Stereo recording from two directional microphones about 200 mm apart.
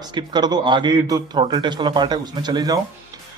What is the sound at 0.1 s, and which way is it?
A man's voice, 20° right (ahead or behind).